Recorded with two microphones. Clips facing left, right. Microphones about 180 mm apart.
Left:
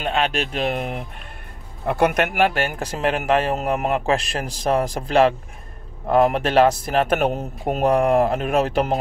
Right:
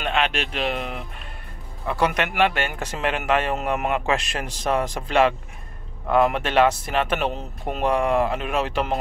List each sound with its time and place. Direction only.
0.0 s speech: 35° left (ahead or behind)